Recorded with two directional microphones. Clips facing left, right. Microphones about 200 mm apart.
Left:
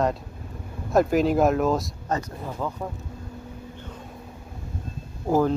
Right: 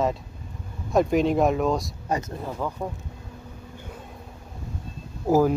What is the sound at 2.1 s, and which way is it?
Speech, 20° right (ahead or behind).